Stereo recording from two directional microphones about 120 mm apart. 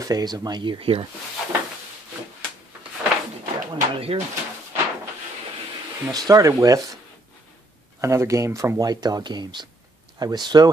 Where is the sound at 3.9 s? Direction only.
55° right (ahead or behind).